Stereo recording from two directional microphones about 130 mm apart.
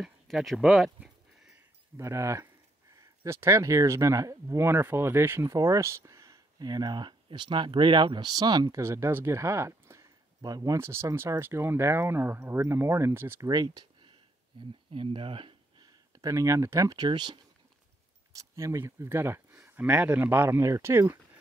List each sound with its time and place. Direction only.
0.0 s a sound: centre (ahead or behind)
2.0 s speech: 20° right (ahead or behind)
13.5 s speech: 30° right (ahead or behind)
14.9 s a sound: 45° right (ahead or behind)
16.2 s speech: 25° right (ahead or behind)
18.3 s speech: 25° right (ahead or behind)